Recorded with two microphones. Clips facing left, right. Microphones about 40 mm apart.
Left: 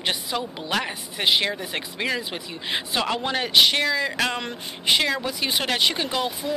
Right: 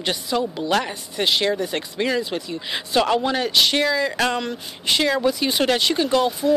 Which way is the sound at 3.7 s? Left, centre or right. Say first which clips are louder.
Right 3 dB; centre.